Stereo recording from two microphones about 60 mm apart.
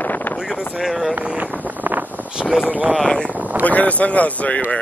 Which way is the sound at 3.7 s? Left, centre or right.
Left.